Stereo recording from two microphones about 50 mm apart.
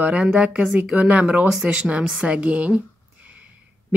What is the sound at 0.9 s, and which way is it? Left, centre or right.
A woman's voice, right.